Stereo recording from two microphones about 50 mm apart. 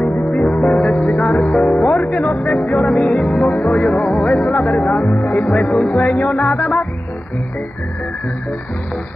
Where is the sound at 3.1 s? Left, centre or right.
Centre.